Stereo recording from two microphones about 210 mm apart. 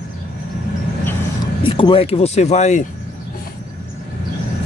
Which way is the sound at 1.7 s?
25° left (ahead or behind).